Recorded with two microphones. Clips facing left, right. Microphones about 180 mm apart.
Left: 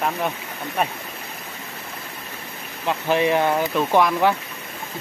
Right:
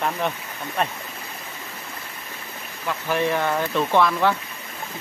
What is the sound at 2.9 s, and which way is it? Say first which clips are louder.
Speech: left 3 dB; 20° left (ahead or behind).